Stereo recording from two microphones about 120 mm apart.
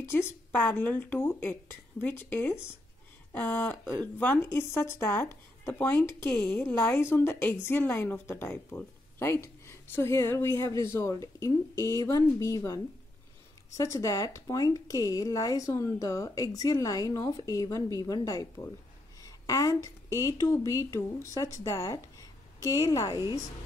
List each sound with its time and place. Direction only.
0.0 s a woman's voice: 20° left (ahead or behind)
19.2 s a sound: 30° left (ahead or behind)
20.2 s a woman's voice: 25° left (ahead or behind)